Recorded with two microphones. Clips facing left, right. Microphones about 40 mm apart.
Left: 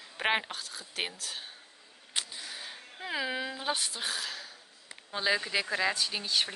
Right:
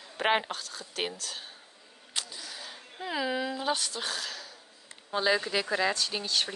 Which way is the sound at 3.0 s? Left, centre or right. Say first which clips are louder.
Right 3 dB; centre.